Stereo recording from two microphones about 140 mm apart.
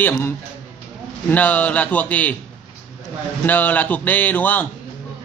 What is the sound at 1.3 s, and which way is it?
Speech, 10° left (ahead or behind).